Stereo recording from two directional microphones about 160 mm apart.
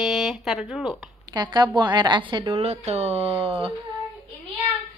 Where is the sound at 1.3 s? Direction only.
25° right (ahead or behind).